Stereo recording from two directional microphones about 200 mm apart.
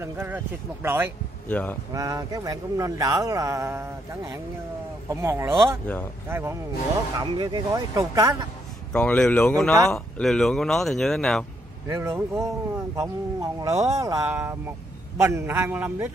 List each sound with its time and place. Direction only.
0.0 s a man's voice: 10° right (ahead or behind)
1.5 s speech: 10° left (ahead or behind)
2.0 s a man's voice: 15° right (ahead or behind)
8.9 s speech: 5° left (ahead or behind)
11.9 s a man's voice: 15° right (ahead or behind)